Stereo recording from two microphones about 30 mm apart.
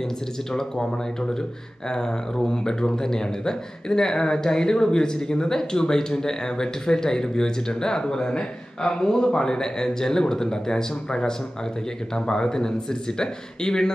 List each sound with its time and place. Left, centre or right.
0.5 s speech: centre